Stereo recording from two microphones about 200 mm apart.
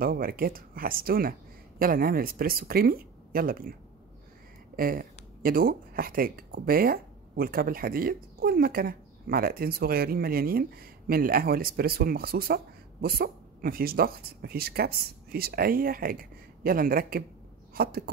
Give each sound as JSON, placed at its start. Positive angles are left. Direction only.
{"t": 0.0, "sound": "speech", "side_deg": -45}
{"t": 4.7, "sound": "speech", "side_deg": -45}